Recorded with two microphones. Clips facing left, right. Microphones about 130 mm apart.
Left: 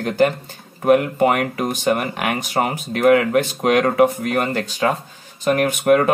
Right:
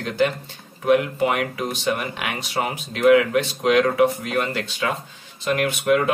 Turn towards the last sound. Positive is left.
turn(degrees=45)  # may be behind; listen again after turning